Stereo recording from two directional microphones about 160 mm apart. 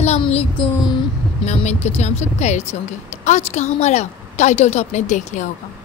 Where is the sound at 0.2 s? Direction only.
40° left (ahead or behind).